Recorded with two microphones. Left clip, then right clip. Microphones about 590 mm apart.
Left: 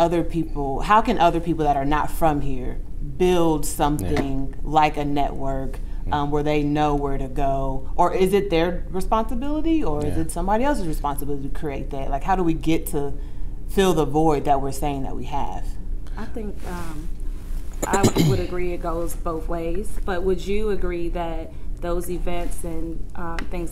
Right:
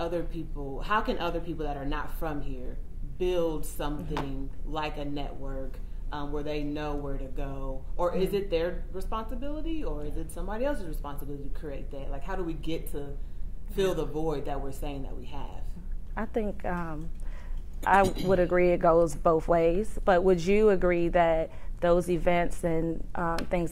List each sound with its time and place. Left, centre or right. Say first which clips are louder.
0.0 s speech: left 12 dB; left
16.2 s speech: right 3 dB; right
18.0 s speech: left 8 dB; left
18.5 s speech: right 5 dB; right